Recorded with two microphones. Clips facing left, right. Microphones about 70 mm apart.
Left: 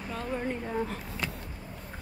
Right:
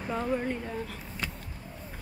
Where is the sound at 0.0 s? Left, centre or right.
Centre.